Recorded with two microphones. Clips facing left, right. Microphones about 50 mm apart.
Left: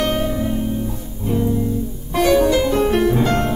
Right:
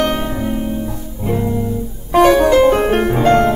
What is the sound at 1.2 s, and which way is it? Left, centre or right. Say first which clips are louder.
Music: right 1 dB; right.